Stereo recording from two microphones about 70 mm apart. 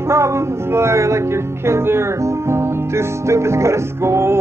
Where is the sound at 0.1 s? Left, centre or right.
Right.